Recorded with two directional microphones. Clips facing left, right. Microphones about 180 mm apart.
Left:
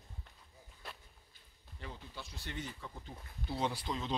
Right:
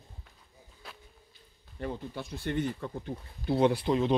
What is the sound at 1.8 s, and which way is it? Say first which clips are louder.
Speech: right 12 dB; 55° right (ahead or behind).